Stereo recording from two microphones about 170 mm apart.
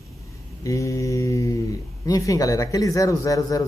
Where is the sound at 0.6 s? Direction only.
20° left (ahead or behind).